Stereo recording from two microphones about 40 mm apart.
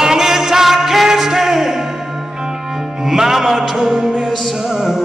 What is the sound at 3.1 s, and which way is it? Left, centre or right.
Music, centre.